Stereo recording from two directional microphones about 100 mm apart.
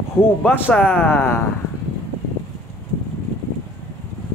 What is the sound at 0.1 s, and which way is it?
Speech, 20° left (ahead or behind).